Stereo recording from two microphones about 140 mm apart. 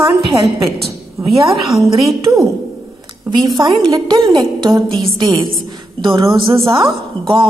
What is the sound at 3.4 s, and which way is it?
A woman's voice, 30° right (ahead or behind).